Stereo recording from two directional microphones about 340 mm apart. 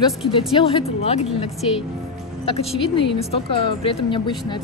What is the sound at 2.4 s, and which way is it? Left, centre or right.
Speech, centre.